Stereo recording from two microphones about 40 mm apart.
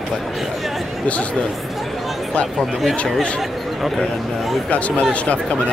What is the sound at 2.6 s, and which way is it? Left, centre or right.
Speech, centre.